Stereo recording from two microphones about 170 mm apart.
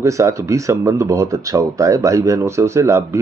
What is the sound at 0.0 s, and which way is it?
A man's voice, 15° right (ahead or behind).